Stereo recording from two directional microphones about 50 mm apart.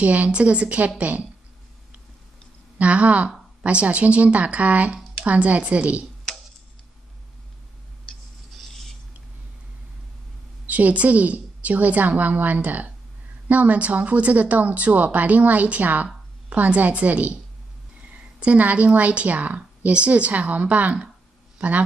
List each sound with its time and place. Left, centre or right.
0.0 s a woman's voice: right
2.8 s a woman's voice: right
8.5 s a sound: centre
10.7 s a woman's voice: right